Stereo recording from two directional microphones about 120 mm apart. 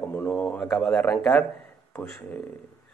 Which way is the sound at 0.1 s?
15° left (ahead or behind).